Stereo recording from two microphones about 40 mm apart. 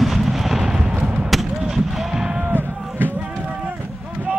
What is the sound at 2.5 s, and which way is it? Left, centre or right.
Run, right.